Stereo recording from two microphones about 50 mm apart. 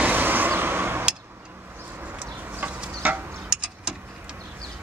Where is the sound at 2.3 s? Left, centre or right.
Right.